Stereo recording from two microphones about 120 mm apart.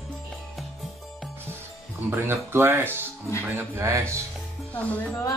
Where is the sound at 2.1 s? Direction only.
20° right (ahead or behind).